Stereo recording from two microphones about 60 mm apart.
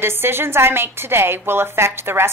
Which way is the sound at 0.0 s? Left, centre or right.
Right.